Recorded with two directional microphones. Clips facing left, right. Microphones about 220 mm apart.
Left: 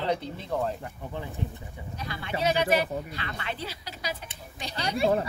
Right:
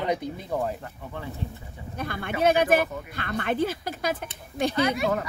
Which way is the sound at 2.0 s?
55° right (ahead or behind).